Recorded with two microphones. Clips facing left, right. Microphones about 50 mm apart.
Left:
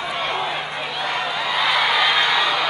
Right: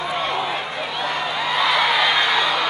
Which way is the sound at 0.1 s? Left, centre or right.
Centre.